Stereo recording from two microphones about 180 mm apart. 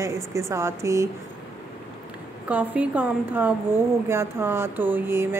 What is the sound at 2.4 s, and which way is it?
A woman's voice, 5° right (ahead or behind).